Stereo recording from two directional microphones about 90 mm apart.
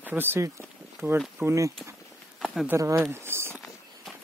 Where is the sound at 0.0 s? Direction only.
20° right (ahead or behind).